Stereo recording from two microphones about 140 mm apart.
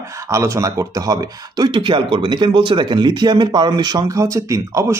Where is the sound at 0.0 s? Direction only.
20° right (ahead or behind).